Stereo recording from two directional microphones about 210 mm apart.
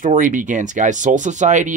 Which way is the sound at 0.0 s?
40° right (ahead or behind).